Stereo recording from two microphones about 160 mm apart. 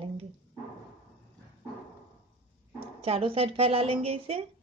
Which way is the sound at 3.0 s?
35° right (ahead or behind).